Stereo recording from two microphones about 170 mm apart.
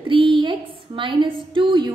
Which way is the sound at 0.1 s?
30° right (ahead or behind).